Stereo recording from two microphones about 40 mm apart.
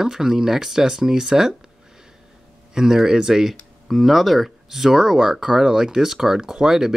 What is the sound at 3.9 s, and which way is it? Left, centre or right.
Speech, centre.